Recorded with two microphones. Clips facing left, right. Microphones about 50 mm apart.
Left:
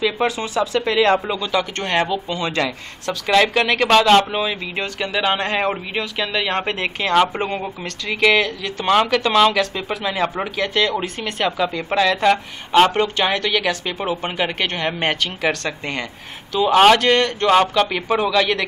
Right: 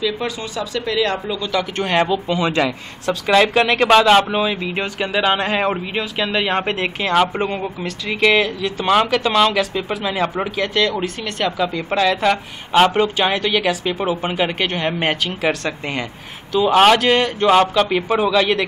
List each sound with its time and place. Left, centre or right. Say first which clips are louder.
0.0 s speech: left 2 dB; centre
1.4 s speech: even; centre
1.8 s speech: right 2 dB; centre
8.8 s speech: even; centre